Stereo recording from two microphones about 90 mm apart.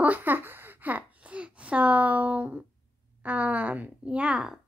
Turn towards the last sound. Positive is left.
turn(degrees=-5)  # may be behind; listen again after turning